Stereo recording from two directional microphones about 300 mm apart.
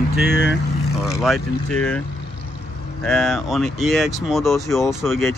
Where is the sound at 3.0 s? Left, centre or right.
Centre.